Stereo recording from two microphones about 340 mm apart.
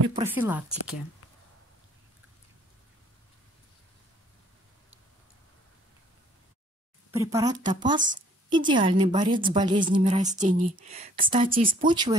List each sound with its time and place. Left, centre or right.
0.1 s speech: centre
7.1 s a woman's voice: centre